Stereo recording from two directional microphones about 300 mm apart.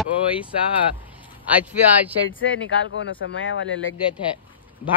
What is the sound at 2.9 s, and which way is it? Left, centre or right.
Speech, left.